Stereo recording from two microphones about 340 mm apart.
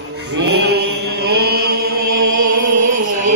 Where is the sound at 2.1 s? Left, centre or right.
Right.